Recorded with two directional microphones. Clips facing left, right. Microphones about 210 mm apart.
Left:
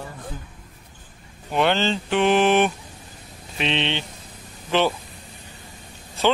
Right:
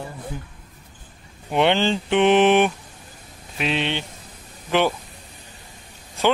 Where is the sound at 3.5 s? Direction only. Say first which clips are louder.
Right 1 dB; 5° right (ahead or behind).